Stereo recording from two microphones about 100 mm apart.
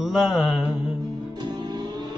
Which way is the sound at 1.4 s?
45° right (ahead or behind).